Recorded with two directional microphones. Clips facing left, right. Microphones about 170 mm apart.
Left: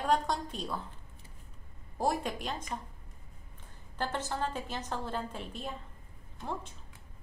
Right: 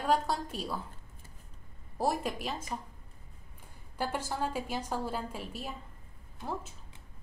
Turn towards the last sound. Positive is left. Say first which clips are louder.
# right 1 dB
turn(degrees=-5)  # may be behind; listen again after turning